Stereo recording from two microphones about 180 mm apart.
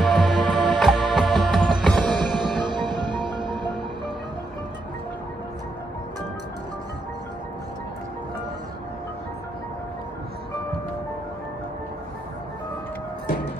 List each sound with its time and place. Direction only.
0.0 s music: centre (ahead or behind)
2.9 s music: 25° right (ahead or behind)